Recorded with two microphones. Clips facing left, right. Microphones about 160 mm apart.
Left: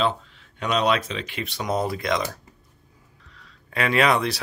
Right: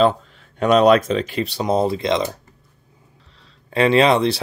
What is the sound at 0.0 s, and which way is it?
Speech, 45° right (ahead or behind).